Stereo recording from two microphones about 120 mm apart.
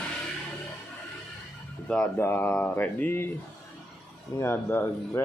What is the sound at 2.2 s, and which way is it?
Speech, 20° left (ahead or behind).